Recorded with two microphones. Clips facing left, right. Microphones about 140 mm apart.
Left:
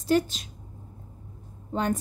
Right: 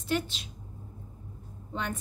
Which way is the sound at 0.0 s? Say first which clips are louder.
Left 7 dB; 40° left (ahead or behind).